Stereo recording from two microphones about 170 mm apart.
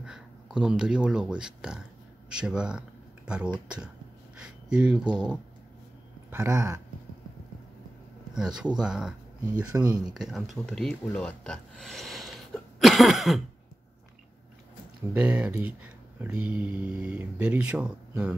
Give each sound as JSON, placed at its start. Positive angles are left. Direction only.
{"t": 0.0, "sound": "speech", "side_deg": -5}
{"t": 6.3, "sound": "speech", "side_deg": -15}
{"t": 8.4, "sound": "speech", "side_deg": -5}
{"t": 15.1, "sound": "speech", "side_deg": -5}